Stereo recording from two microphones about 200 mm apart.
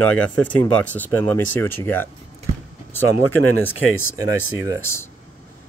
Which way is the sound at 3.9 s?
90° left.